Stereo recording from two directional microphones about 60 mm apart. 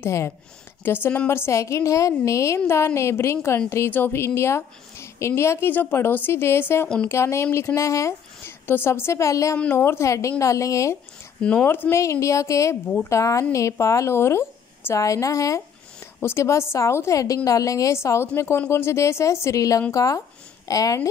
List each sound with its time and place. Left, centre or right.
0.0 s a woman's voice: left
0.8 s a woman's voice: left
1.6 s a woman's voice: left
5.7 s a woman's voice: left
8.6 s a woman's voice: left
11.6 s a woman's voice: left
11.9 s a woman's voice: left
15.0 s a woman's voice: left
16.2 s a woman's voice: left
17.5 s a woman's voice: left
17.9 s a woman's voice: left
20.6 s a woman's voice: left